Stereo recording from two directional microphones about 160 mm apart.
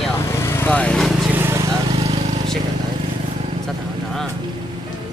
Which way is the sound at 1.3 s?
15° right (ahead or behind).